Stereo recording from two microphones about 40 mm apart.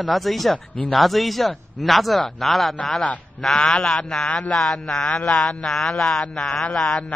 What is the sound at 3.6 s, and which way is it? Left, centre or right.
A man's voice, left.